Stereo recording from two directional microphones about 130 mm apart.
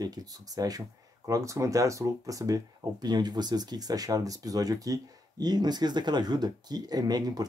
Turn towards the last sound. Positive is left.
turn(degrees=-30)  # may be behind; listen again after turning